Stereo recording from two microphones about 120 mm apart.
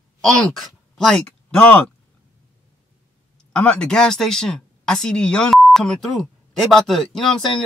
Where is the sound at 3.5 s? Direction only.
10° left (ahead or behind).